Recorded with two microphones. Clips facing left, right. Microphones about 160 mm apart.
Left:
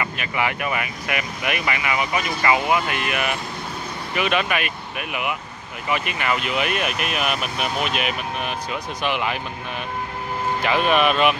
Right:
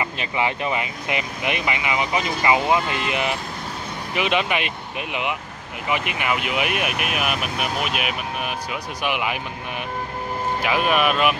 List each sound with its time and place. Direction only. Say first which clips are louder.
0.0 s speech: right 1 dB; 25° right (ahead or behind)
10.6 s speech: left 2 dB; 5° right (ahead or behind)